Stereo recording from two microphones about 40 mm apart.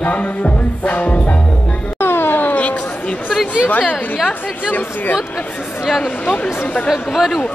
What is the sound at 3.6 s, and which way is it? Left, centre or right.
Speech, left.